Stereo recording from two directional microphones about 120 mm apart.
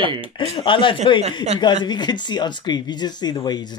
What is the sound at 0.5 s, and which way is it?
Speech, 45° left (ahead or behind).